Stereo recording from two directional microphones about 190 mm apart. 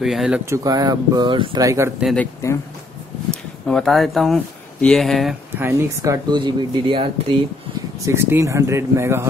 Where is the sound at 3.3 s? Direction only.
5° left (ahead or behind).